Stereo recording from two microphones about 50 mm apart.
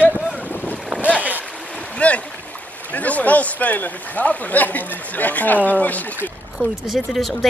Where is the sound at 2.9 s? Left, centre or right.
Left.